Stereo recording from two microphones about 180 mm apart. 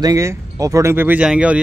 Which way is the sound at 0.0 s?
15° right (ahead or behind).